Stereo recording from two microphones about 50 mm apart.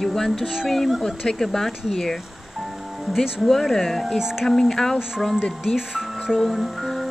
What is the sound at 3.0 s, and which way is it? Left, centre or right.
Speech, centre.